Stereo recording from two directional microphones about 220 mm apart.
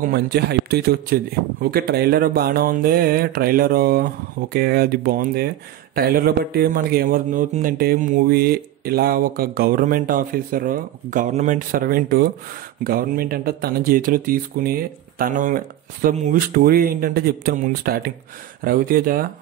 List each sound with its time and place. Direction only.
0.0 s a man's voice: 45° right (ahead or behind)